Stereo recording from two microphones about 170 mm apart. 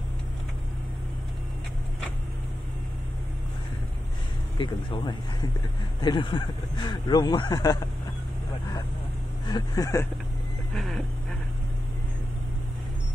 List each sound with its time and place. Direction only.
4.6 s speech: 25° left (ahead or behind)
9.5 s speech: 25° left (ahead or behind)
10.7 s dog: centre (ahead or behind)